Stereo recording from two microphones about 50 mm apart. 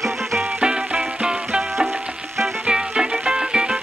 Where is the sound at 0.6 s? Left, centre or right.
Centre.